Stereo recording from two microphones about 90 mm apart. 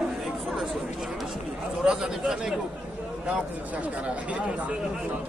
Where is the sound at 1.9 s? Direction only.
10° right (ahead or behind).